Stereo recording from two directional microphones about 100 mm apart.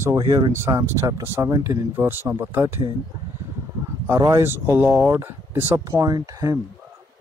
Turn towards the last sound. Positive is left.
turn(degrees=-35)  # may be behind; listen again after turning